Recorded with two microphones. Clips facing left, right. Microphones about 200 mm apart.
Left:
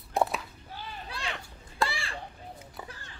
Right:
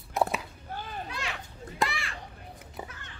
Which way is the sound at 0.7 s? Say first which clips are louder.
Right 4 dB; 50° right (ahead or behind).